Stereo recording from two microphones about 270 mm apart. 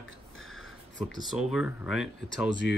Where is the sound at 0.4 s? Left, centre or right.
Left.